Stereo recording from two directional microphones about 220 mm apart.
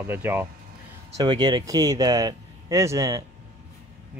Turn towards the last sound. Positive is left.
turn(degrees=-15)  # may be behind; listen again after turning